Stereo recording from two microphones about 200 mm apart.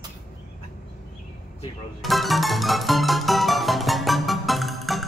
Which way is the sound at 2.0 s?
Centre (ahead or behind).